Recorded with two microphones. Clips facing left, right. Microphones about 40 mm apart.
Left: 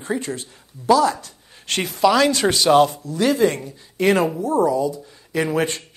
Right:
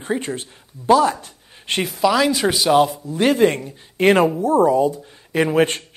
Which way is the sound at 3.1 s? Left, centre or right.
Right.